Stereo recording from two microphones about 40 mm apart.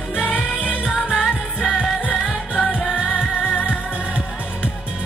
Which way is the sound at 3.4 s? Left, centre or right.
Left.